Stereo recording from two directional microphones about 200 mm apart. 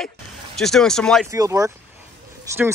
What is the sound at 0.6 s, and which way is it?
Speech, centre (ahead or behind).